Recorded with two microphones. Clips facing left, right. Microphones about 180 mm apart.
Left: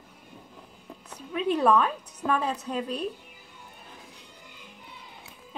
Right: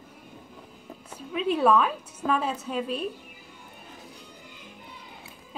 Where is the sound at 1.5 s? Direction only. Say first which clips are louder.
Right 1 dB; 5° right (ahead or behind).